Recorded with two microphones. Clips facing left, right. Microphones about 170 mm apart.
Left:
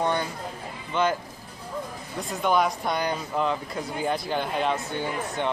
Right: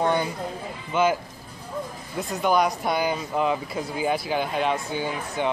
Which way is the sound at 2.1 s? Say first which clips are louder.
Right 2 dB; centre (ahead or behind).